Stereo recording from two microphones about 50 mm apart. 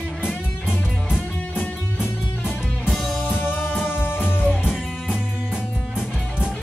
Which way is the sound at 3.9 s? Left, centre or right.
Left.